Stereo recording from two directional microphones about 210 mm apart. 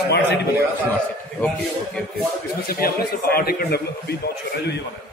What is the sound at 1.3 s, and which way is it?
Speech, 5° left (ahead or behind).